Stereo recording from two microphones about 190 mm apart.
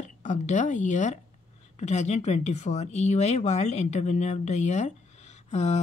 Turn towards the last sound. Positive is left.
turn(degrees=35)  # may be behind; listen again after turning